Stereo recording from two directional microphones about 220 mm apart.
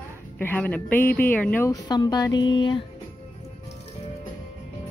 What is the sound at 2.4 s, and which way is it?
Music, 20° left (ahead or behind).